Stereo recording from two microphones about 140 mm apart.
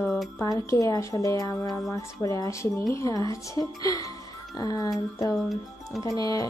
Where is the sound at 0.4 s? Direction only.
25° left (ahead or behind).